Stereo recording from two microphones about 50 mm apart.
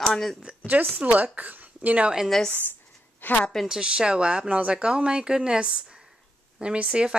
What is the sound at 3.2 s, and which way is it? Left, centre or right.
Speech, left.